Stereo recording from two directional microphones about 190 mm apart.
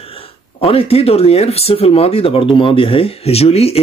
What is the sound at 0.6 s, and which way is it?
Speech, 30° left (ahead or behind).